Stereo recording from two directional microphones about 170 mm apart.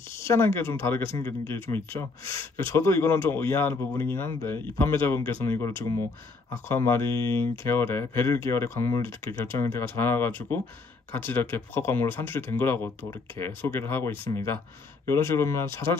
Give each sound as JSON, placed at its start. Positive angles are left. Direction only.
{"t": 0.2, "sound": "speech", "side_deg": 15}